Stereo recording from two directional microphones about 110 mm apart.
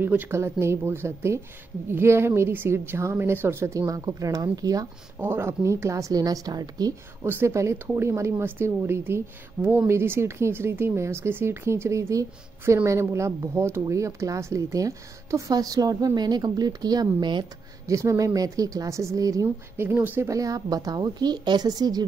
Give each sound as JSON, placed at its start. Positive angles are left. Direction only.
{"t": 0.0, "sound": "speech", "side_deg": -15}
{"t": 5.2, "sound": "speech", "side_deg": -20}
{"t": 7.2, "sound": "a woman's voice", "side_deg": -25}
{"t": 17.8, "sound": "a woman's voice", "side_deg": -30}
{"t": 19.4, "sound": "speech", "side_deg": -20}
{"t": 20.2, "sound": "a woman's voice", "side_deg": -30}